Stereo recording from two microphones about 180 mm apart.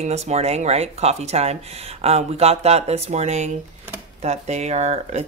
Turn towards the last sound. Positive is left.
turn(degrees=-40)  # may be behind; listen again after turning